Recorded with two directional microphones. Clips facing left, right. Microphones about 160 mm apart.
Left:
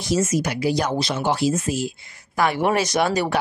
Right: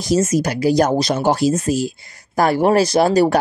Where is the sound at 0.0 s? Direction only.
40° right (ahead or behind).